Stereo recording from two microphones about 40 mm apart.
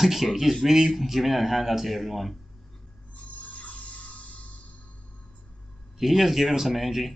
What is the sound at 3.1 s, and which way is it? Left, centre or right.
Music, left.